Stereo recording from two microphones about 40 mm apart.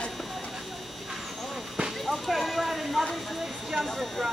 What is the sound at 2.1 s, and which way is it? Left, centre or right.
Speech, centre.